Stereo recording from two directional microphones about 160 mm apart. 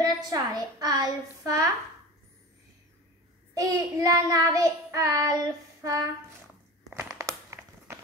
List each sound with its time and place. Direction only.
0.0 s child singing: 25° right (ahead or behind)
3.5 s child singing: 20° right (ahead or behind)
6.9 s crumpling: 15° right (ahead or behind)